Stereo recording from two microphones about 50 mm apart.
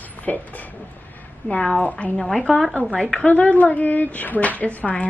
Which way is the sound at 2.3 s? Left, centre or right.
Centre.